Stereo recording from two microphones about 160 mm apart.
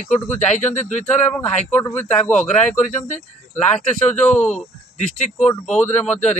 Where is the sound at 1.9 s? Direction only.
10° left (ahead or behind).